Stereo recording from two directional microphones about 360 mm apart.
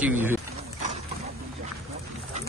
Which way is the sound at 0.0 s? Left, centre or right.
Centre.